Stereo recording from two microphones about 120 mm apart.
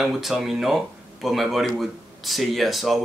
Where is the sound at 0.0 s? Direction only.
Centre (ahead or behind).